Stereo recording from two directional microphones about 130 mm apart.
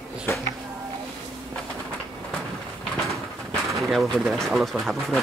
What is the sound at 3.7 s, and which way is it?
Speech, centre (ahead or behind).